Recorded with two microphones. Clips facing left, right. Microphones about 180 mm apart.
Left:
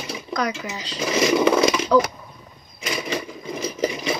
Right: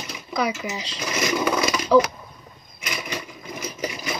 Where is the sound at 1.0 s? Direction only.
30° left (ahead or behind).